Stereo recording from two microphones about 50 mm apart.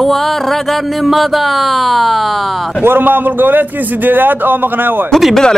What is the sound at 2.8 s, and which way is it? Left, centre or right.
A man's voice, right.